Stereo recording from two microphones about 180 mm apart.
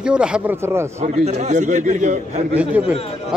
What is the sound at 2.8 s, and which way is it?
Speech, 10° right (ahead or behind).